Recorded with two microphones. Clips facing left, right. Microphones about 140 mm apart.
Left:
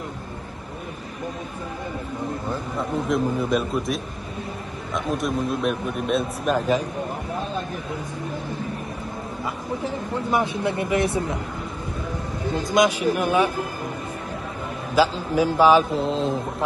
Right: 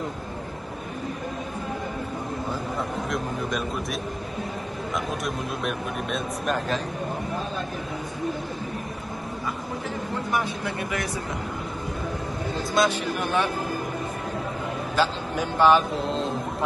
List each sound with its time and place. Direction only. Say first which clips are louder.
2.8 s a man's voice: left 10 dB; centre (ahead or behind)
10.3 s speech: left 6 dB; 25° left (ahead or behind)
12.7 s speech: left 4 dB; 10° left (ahead or behind)
15.0 s a man's voice: left 6 dB; 5° left (ahead or behind)